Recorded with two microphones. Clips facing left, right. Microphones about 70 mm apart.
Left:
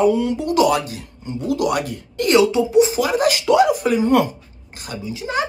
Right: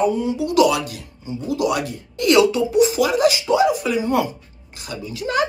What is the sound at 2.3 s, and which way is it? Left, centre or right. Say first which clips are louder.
Speech: left 2 dB; left.